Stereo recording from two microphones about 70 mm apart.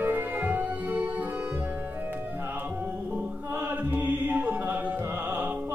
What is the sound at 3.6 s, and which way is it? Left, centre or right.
Music, right.